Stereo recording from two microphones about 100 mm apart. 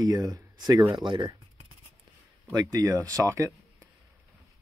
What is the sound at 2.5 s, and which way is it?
Speech, 40° right (ahead or behind).